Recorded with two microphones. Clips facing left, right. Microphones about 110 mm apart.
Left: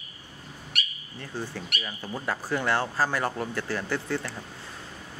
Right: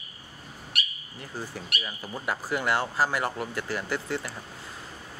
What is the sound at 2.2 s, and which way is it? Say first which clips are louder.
Speech: even; 15° right (ahead or behind).